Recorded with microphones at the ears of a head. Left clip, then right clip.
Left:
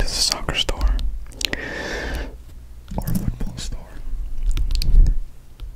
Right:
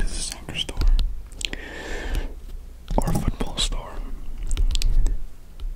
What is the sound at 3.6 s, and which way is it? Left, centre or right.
Whispering, right.